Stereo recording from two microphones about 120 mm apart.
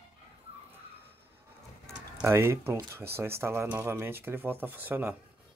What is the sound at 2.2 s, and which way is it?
Speech, 20° right (ahead or behind).